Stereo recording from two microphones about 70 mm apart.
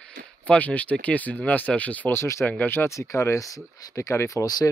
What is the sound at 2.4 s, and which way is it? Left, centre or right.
Speech, left.